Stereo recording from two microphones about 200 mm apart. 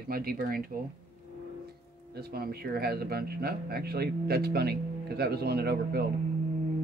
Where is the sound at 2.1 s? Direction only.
50° right (ahead or behind).